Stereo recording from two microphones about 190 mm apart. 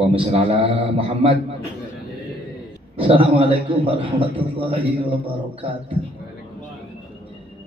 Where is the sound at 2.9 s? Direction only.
30° right (ahead or behind).